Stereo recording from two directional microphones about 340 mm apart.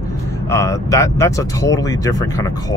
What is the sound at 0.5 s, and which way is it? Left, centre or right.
Speech, centre.